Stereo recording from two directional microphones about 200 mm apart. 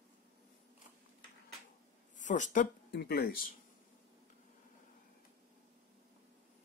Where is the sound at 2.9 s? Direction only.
55° left (ahead or behind).